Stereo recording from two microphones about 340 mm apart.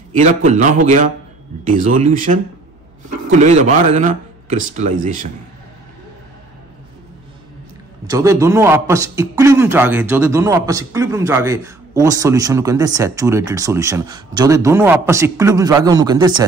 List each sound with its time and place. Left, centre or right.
0.2 s speech: right
8.1 s a man's voice: centre